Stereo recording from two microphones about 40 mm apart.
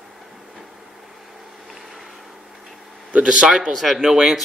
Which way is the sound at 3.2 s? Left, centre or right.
Centre.